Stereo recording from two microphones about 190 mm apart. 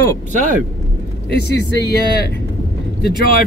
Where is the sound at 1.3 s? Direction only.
55° left (ahead or behind).